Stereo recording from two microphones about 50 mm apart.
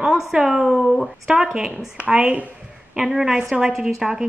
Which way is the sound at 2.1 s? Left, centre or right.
Right.